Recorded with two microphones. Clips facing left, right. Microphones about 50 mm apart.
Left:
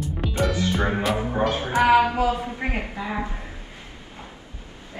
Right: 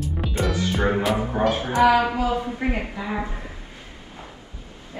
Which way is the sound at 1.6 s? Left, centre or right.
Left.